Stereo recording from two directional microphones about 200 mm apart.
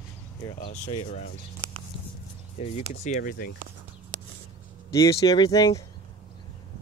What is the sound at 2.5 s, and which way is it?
Speech, 35° left (ahead or behind).